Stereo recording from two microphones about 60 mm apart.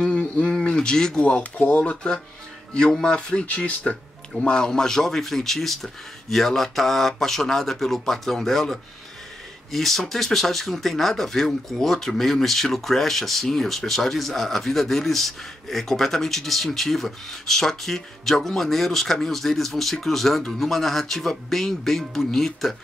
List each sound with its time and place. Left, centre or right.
0.0 s a sound: centre
1.2 s speech: left
2.7 s speech: centre